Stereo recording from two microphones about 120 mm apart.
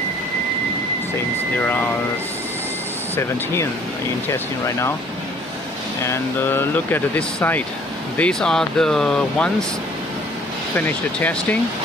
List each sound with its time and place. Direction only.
4.3 s speech: 25° left (ahead or behind)
6.0 s speech: 20° left (ahead or behind)
11.1 s speech: 10° left (ahead or behind)